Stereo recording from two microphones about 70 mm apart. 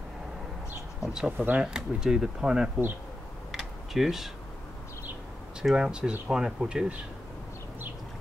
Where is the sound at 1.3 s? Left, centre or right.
Right.